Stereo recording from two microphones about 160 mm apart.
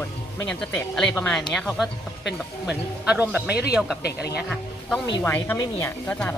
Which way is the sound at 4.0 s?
90° left.